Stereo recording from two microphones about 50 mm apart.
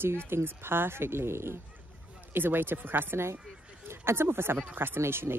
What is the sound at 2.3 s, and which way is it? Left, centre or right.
Speech, right.